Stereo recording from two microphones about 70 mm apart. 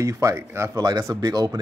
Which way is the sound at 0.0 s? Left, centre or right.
Right.